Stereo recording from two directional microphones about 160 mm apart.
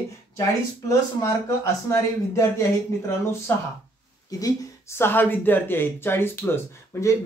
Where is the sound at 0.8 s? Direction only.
20° left (ahead or behind).